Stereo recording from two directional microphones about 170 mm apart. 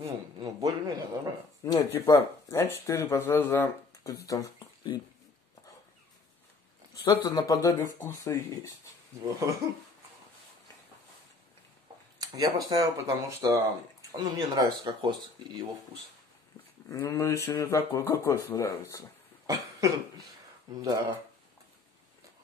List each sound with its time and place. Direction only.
0.0 s speech: 20° right (ahead or behind)
1.6 s speech: 20° left (ahead or behind)
6.9 s speech: 20° left (ahead or behind)
12.2 s speech: 20° right (ahead or behind)
17.0 s speech: 20° left (ahead or behind)
19.4 s cough: 20° right (ahead or behind)
20.7 s speech: 20° right (ahead or behind)